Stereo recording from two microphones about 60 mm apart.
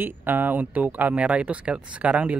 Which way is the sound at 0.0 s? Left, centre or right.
Right.